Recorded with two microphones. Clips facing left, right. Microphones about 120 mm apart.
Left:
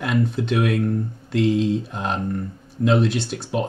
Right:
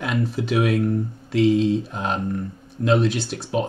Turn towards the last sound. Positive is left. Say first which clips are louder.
# even
turn(degrees=0)  # may be behind; listen again after turning